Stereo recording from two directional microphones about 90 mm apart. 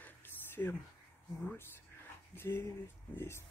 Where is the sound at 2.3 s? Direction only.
25° left (ahead or behind).